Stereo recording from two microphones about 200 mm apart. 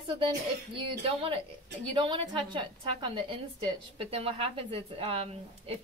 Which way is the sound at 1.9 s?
25° right (ahead or behind).